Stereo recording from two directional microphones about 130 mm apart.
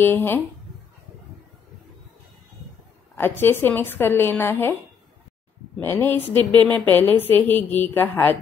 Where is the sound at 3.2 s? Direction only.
15° left (ahead or behind).